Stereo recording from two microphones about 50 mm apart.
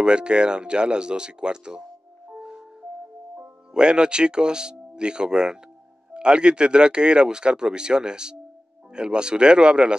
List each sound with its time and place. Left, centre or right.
0.0 s speech: centre
2.2 s music: centre
3.7 s speech: centre